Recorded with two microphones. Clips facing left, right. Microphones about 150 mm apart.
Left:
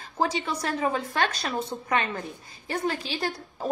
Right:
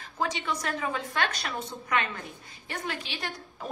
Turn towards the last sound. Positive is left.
turn(degrees=35)  # may be behind; listen again after turning